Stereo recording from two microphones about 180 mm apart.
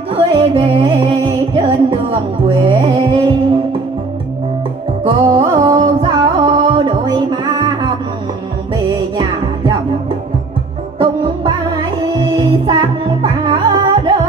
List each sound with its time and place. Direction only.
0.1 s music: 30° right (ahead or behind)
5.0 s music: 25° right (ahead or behind)
12.4 s music: 25° right (ahead or behind)